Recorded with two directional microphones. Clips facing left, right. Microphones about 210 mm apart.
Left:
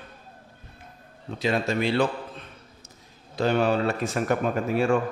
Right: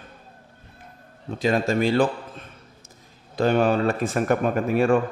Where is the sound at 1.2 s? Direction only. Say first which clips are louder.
Right 3 dB; 45° right (ahead or behind).